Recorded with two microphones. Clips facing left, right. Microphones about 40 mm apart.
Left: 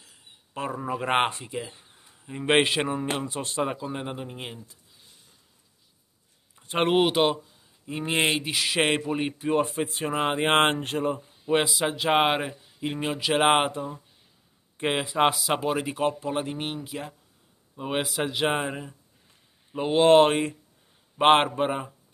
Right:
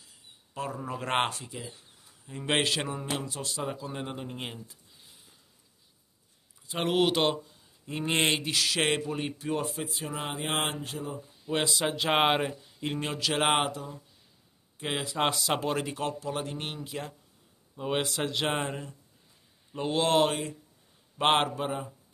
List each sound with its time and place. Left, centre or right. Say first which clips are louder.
0.6 s speech: left 4 dB; left
0.9 s speech: left 4 dB; centre; by 3.9 s left
3.9 s speech: left 3 dB; centre
4.2 s a sound: left 1 dB; centre
6.5 s a sound: left 6 dB; left
7.0 s speech: even; centre
9.7 s speech: left 7 dB; left
11.6 s speech: left 3 dB; centre; by 15.0 s left
15.0 s speech: left 6 dB; centre
15.3 s speech: left 3 dB; centre
16.0 s speech: left 6 dB; left
16.6 s a man's voice: left 3 dB; centre; by 21.9 s left